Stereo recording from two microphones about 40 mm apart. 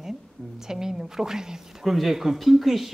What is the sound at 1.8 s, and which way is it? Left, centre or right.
Speech, centre.